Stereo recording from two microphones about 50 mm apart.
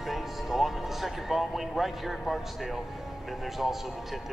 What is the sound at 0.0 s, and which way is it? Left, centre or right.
A man's voice, centre.